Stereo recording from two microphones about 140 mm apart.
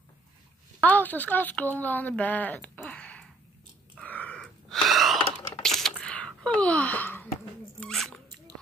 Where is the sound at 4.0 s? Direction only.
10° left (ahead or behind).